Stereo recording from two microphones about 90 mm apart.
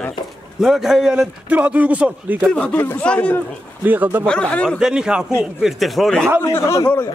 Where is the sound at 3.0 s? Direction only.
15° left (ahead or behind).